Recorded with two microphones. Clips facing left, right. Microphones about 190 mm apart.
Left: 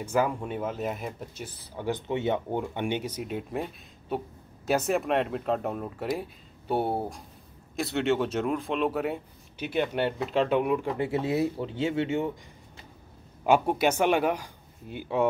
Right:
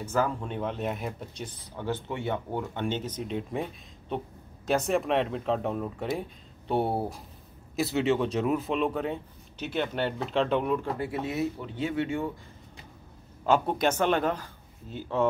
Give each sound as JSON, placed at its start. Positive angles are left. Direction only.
{"t": 0.0, "sound": "speech", "side_deg": 15}
{"t": 11.0, "sound": "speech", "side_deg": 25}
{"t": 13.5, "sound": "speech", "side_deg": 10}